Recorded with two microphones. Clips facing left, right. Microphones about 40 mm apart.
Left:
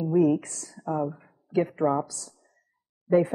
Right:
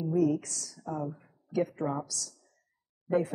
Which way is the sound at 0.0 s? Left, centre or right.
Left.